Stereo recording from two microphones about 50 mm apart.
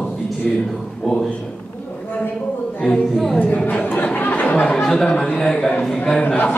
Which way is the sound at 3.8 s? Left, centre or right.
Left.